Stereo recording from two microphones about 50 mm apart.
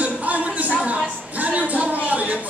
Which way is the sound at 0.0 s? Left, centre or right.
Right.